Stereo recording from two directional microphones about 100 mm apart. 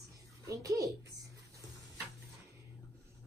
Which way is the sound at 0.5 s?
35° right (ahead or behind).